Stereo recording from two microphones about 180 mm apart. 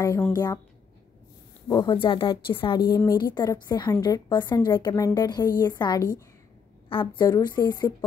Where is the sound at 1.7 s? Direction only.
25° left (ahead or behind).